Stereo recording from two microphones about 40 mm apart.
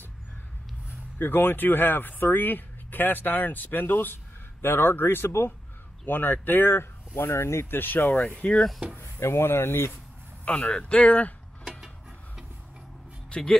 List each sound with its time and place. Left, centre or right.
1.1 s speech: left
6.0 s speech: left
6.7 s speech: left
7.8 s speech: left
8.3 s speech: left
8.9 s speech: left
10.4 s speech: left
13.3 s speech: centre